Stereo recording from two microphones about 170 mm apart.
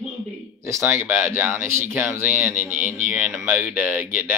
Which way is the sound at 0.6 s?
15° right (ahead or behind).